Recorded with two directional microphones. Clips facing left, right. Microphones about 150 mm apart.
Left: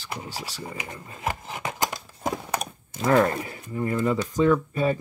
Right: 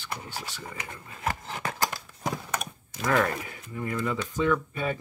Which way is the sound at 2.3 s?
35° left (ahead or behind).